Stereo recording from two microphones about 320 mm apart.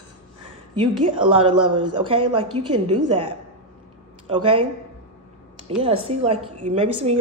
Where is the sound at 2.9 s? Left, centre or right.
Right.